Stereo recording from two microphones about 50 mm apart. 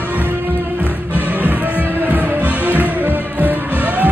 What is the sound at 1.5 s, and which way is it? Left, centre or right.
Music, right.